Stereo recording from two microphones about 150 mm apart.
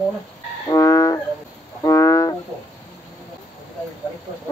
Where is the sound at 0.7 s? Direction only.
20° left (ahead or behind).